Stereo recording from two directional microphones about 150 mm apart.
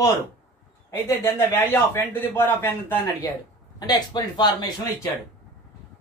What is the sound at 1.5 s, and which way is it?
Speech, 15° left (ahead or behind).